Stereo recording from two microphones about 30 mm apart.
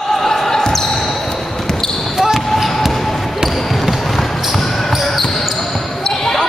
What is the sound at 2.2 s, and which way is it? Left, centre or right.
Basketball bounce, centre.